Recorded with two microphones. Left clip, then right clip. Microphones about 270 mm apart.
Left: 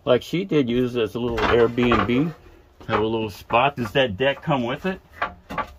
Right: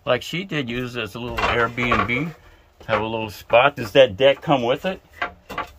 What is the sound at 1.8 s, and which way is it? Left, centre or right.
Speech, right.